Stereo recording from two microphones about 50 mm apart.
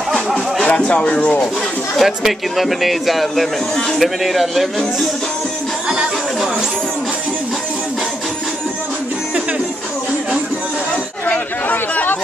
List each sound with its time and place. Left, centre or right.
0.7 s speech: left
2.0 s a man's voice: centre
3.7 s speech: centre
4.0 s a man's voice: centre
11.2 s chatter: left